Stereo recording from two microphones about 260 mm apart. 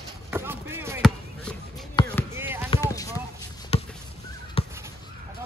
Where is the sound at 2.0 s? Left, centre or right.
Centre.